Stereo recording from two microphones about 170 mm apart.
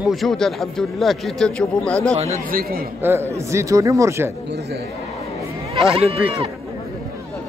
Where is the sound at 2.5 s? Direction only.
60° right (ahead or behind).